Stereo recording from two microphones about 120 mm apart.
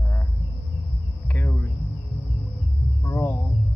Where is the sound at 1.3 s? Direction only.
15° left (ahead or behind).